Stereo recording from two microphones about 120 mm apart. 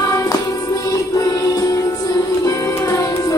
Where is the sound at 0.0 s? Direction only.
25° left (ahead or behind).